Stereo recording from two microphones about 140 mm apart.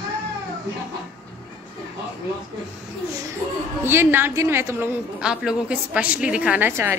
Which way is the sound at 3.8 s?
15° right (ahead or behind).